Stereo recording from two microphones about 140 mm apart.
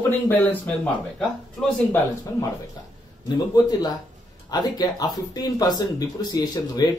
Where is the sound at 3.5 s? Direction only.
30° left (ahead or behind).